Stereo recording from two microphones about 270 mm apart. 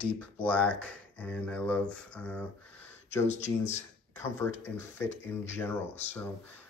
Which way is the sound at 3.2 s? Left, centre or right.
Left.